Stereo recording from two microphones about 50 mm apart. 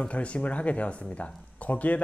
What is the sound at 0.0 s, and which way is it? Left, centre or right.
Speech, left.